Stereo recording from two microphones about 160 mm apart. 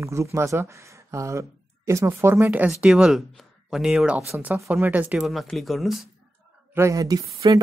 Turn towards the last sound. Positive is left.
turn(degrees=-20)  # may be behind; listen again after turning